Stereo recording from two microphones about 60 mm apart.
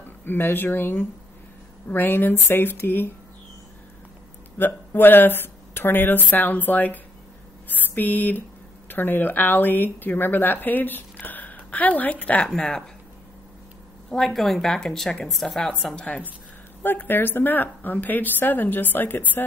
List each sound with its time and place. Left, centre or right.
0.2 s speech: left
4.6 s speech: left
7.6 s a sound: left
8.8 s speech: left
11.1 s a sound: left
12.0 s a woman's voice: left
12.4 s speech: centre
14.1 s a woman's voice: centre
16.8 s speech: left